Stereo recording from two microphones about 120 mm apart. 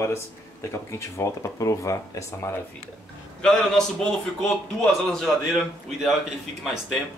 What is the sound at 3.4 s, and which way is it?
A man's voice, 5° left (ahead or behind).